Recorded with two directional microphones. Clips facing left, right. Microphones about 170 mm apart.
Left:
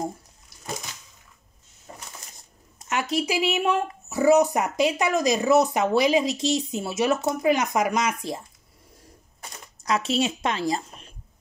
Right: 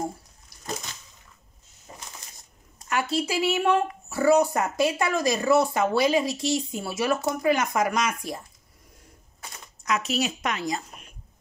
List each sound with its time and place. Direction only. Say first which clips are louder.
2.9 s speech: left 1 dB; 20° left (ahead or behind)
9.8 s a woman's voice: left 3 dB; 30° left (ahead or behind)